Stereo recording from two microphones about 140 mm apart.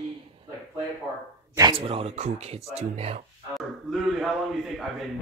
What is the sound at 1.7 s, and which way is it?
Speech, 40° right (ahead or behind).